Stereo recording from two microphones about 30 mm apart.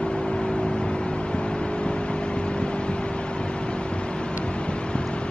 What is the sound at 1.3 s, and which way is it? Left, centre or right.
Vehicle, left.